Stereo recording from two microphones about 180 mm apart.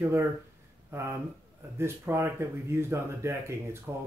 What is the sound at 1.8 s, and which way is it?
Speech, 15° right (ahead or behind).